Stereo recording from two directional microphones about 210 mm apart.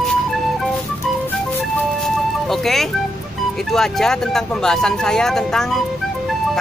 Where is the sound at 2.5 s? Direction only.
Centre (ahead or behind).